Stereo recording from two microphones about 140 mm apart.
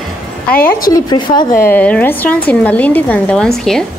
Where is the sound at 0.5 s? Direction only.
90° left.